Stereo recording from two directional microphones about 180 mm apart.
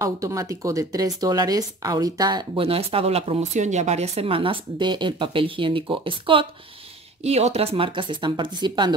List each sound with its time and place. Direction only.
0.0 s speech: 20° right (ahead or behind)